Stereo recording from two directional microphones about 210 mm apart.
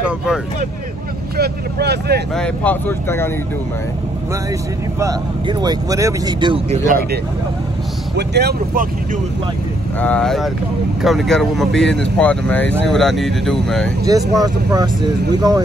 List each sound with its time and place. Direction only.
1.3 s speech: 50° right (ahead or behind)
2.3 s speech: 5° left (ahead or behind)
5.0 s speech: 20° right (ahead or behind)
8.2 s speech: 50° right (ahead or behind)
9.9 s speech: 5° left (ahead or behind)
14.0 s speech: 15° right (ahead or behind)